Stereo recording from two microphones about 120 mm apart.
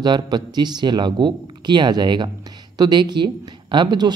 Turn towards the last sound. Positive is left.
turn(degrees=-35)  # may be behind; listen again after turning